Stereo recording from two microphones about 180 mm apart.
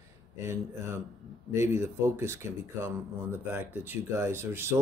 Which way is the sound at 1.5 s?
15° right (ahead or behind).